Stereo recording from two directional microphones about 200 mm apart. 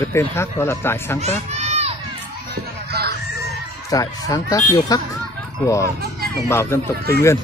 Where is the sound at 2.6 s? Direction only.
50° right (ahead or behind).